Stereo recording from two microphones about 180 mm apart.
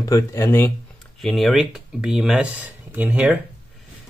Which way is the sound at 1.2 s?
Centre (ahead or behind).